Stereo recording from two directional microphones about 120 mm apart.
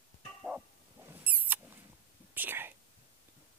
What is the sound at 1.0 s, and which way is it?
Rodents, 15° right (ahead or behind).